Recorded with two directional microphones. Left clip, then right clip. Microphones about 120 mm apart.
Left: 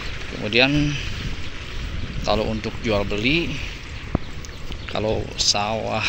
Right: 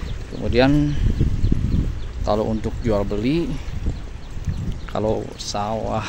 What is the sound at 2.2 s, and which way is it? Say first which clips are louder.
Speech: right 1 dB; 55° right (ahead or behind).